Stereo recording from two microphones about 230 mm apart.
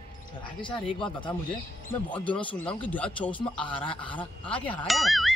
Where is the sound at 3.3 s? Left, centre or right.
Left.